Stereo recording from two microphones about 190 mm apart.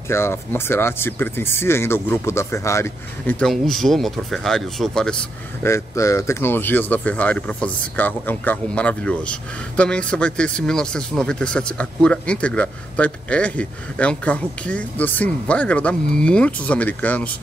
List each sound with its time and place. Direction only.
0.1 s speech: 15° left (ahead or behind)
5.7 s speech: 15° left (ahead or behind)